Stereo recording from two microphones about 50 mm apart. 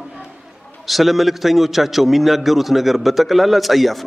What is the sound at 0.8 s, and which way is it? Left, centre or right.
A man's voice, centre.